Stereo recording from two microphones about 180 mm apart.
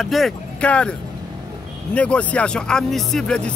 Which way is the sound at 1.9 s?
5° left (ahead or behind).